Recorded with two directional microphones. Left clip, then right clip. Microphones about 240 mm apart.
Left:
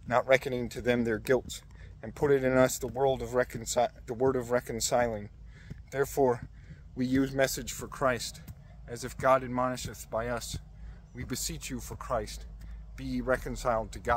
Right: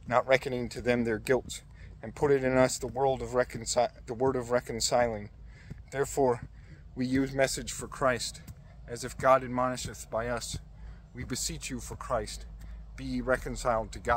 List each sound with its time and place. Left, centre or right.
0.1 s speech: centre